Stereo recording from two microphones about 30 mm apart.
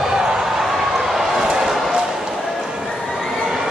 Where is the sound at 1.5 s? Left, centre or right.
Centre.